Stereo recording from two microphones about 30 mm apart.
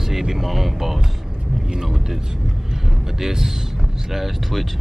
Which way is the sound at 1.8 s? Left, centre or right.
Centre.